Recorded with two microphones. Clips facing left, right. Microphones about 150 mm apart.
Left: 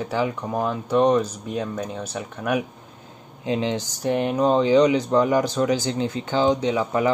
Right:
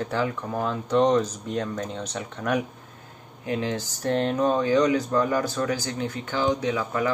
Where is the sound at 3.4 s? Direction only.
20° left (ahead or behind).